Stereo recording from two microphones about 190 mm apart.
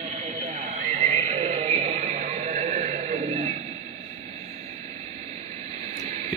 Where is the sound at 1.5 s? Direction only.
35° right (ahead or behind).